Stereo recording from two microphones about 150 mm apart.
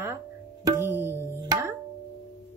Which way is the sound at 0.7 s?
15° right (ahead or behind).